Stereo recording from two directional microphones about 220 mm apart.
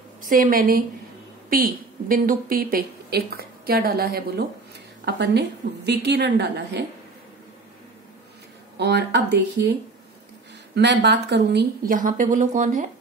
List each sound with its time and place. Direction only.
0.2 s a woman's voice: 40° right (ahead or behind)
8.7 s a woman's voice: 50° right (ahead or behind)